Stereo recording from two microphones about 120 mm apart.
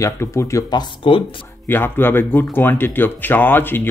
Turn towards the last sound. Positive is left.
turn(degrees=15)  # may be behind; listen again after turning